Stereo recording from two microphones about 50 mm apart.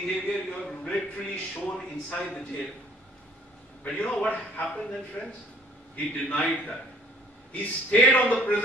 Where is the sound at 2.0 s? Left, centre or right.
Left.